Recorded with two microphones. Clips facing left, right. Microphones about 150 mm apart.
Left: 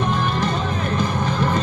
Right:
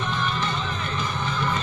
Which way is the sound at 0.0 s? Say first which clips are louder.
Left 6 dB; 45° left (ahead or behind).